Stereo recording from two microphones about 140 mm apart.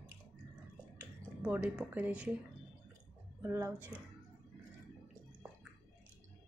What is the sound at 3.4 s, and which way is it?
Speech, 20° right (ahead or behind).